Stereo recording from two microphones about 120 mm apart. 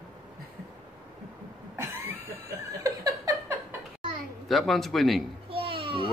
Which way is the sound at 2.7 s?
25° right (ahead or behind).